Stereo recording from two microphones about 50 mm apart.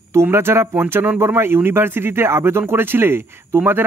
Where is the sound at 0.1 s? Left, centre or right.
Right.